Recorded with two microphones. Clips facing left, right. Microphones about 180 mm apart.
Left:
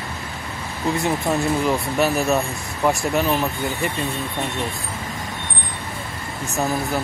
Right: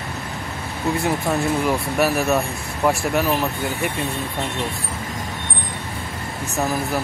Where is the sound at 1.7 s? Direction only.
Centre (ahead or behind).